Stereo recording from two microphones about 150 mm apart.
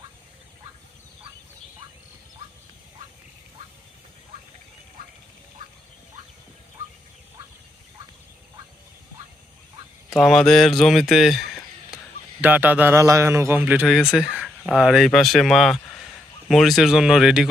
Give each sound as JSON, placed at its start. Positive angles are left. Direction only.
{"t": 10.0, "sound": "speech", "side_deg": 0}
{"t": 12.4, "sound": "a man's voice", "side_deg": -10}